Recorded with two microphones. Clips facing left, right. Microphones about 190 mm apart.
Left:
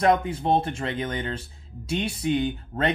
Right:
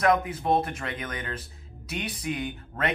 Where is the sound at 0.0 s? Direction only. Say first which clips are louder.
Left 2 dB; 30° left (ahead or behind).